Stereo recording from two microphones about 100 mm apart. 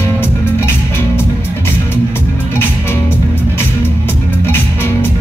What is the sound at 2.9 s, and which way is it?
Music, 25° left (ahead or behind).